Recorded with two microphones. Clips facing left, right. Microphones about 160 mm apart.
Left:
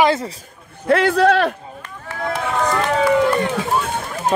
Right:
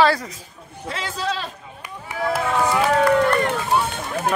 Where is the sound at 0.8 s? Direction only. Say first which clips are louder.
Left 13 dB; 60° left (ahead or behind).